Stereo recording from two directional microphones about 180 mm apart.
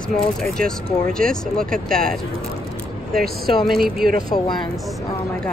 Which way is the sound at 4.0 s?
55° right (ahead or behind).